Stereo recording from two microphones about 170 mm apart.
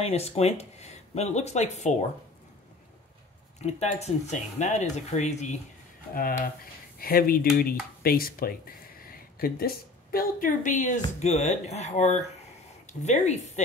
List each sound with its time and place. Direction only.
0.0 s speech: 35° left (ahead or behind)
3.5 s speech: 40° left (ahead or behind)
6.1 s speech: 55° left (ahead or behind)